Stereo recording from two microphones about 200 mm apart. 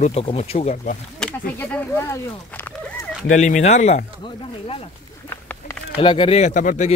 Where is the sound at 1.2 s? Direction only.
5° left (ahead or behind).